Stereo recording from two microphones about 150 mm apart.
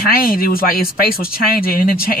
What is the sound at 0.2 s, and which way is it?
Speech, 80° left.